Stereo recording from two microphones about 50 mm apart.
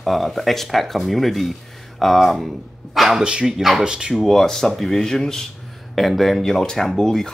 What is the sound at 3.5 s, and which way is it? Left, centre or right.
Speech, centre.